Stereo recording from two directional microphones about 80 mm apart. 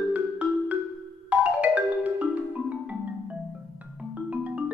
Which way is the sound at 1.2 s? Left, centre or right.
Centre.